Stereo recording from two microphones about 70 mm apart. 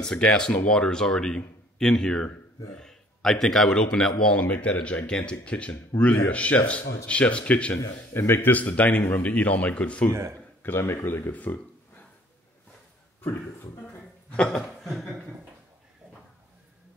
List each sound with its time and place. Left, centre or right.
0.0 s a man's voice: centre
7.7 s a man's voice: left; by 10.0 s centre
10.6 s speech: left
13.2 s speech: left
14.3 s speech: centre